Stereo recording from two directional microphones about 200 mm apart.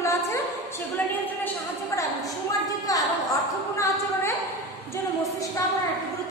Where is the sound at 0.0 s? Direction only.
15° left (ahead or behind).